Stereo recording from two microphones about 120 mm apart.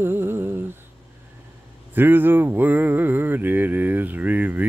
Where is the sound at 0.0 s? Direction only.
20° right (ahead or behind).